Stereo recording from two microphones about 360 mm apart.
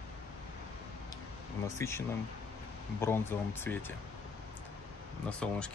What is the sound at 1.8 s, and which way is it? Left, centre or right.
Speech, centre.